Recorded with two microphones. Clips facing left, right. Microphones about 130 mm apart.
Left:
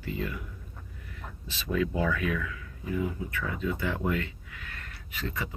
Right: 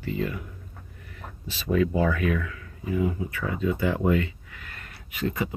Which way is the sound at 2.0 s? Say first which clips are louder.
Right 4 dB; 55° right (ahead or behind).